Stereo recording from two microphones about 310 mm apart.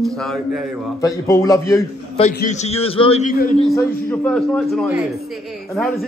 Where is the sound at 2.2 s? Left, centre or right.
Left.